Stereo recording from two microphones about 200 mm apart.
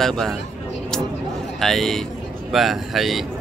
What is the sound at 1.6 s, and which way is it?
Speech, centre (ahead or behind).